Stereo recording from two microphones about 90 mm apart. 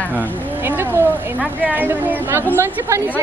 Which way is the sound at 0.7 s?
20° right (ahead or behind).